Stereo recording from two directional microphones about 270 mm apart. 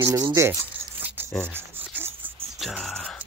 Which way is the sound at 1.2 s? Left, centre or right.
Centre.